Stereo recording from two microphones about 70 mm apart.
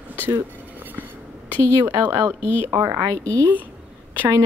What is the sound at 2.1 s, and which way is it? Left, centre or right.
Speech, right.